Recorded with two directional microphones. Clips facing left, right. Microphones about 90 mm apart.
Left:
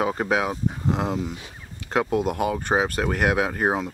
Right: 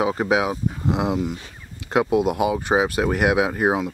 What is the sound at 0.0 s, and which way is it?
Speech, 5° right (ahead or behind).